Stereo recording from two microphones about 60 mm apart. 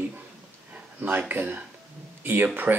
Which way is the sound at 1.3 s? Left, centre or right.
Right.